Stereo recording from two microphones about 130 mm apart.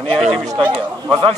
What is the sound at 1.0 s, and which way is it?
Speech, 35° right (ahead or behind).